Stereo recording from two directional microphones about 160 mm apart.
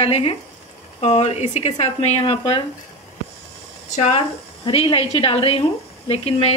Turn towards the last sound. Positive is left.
turn(degrees=40)  # may be behind; listen again after turning